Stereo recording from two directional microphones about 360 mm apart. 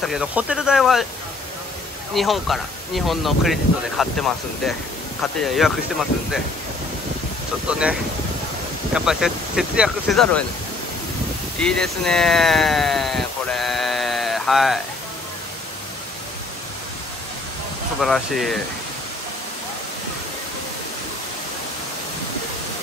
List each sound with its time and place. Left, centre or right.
0.0 s speech: centre
2.1 s speech: centre
7.6 s speech: centre
11.6 s speech: centre
18.0 s speech: centre